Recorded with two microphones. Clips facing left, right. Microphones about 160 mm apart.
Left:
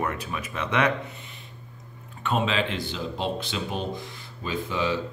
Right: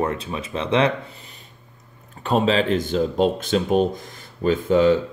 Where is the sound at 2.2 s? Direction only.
40° right (ahead or behind).